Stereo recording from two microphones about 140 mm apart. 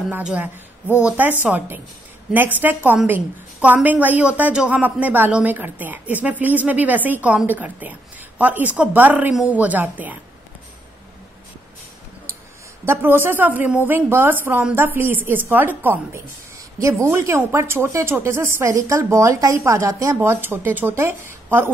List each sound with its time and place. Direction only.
0.1 s a woman's voice: 10° right (ahead or behind)
12.8 s a woman's voice: 15° right (ahead or behind)